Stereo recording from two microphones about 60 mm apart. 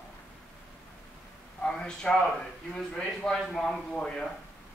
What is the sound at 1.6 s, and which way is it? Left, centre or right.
A man's voice, centre.